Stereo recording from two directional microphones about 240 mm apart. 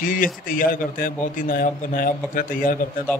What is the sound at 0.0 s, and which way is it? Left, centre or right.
Speech, left.